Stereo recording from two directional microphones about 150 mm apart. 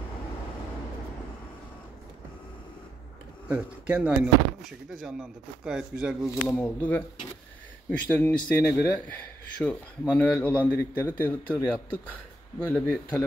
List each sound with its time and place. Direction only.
3.4 s speech: 10° right (ahead or behind)
6.4 s speech: 10° left (ahead or behind)
8.1 s speech: 10° left (ahead or behind)